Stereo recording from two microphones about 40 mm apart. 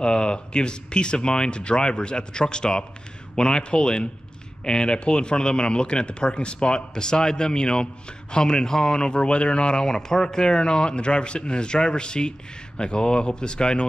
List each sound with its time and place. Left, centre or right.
0.0 s speech: left